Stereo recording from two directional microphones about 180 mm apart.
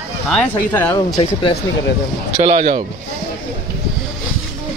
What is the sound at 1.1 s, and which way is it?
Speech, 30° left (ahead or behind).